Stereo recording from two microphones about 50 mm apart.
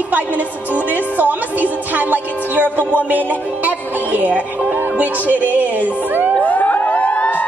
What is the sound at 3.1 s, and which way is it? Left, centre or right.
Music, right.